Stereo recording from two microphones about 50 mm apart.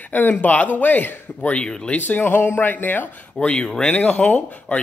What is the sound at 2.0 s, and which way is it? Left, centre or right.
Speech, left.